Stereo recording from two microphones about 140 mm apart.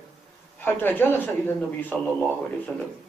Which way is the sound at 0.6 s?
15° left (ahead or behind).